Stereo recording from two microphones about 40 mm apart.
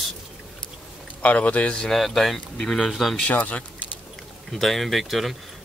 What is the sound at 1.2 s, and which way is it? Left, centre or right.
Speech, left.